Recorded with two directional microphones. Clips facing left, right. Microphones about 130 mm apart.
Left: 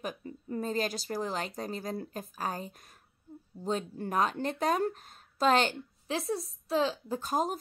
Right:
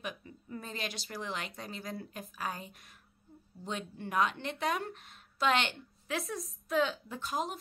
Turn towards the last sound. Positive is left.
turn(degrees=45)  # may be behind; listen again after turning